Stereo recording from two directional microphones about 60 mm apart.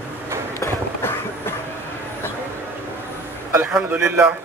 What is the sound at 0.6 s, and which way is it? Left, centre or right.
Run, left.